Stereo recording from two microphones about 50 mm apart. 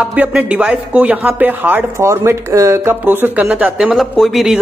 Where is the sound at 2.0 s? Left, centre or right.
Right.